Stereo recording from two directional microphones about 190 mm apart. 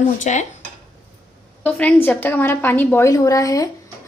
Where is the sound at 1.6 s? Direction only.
5° left (ahead or behind).